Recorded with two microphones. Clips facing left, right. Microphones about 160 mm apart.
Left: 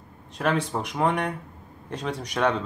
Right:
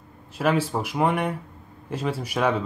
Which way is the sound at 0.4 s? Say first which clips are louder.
Right 2 dB; 5° right (ahead or behind).